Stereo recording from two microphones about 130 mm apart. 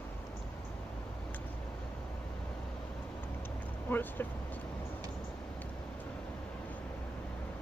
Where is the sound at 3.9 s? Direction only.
15° left (ahead or behind).